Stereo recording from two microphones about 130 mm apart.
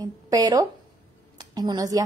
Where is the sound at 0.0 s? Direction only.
30° right (ahead or behind).